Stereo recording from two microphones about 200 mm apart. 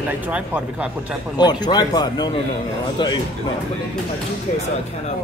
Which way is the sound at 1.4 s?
20° left (ahead or behind).